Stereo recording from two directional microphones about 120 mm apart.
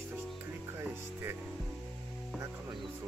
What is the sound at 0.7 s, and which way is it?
Speech, 20° right (ahead or behind).